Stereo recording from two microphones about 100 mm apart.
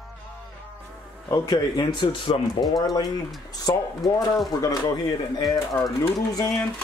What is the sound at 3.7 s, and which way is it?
Speech, 35° left (ahead or behind).